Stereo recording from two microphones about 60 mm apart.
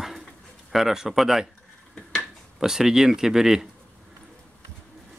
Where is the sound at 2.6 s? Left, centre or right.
Centre.